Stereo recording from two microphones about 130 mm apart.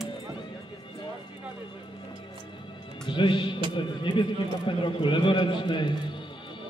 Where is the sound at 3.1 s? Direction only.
40° left (ahead or behind).